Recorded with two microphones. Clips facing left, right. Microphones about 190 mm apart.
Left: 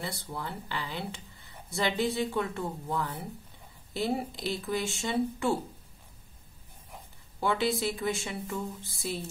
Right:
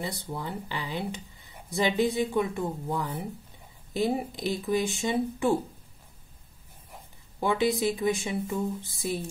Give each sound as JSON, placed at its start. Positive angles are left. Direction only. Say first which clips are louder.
{"t": 0.0, "sound": "speech", "louder": "right 3 dB", "side_deg": -20}
{"t": 7.3, "sound": "speech", "louder": "right 3 dB", "side_deg": -15}